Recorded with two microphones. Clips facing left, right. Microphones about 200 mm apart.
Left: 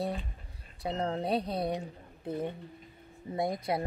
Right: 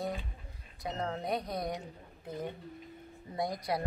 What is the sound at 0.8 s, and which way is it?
Speech, 30° left (ahead or behind).